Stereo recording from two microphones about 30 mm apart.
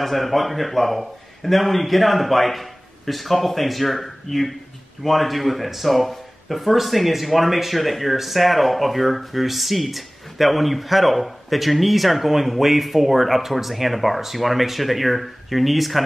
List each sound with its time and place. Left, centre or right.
0.0 s speech: centre